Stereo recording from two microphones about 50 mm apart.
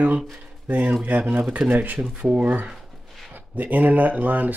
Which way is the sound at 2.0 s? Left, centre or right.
Right.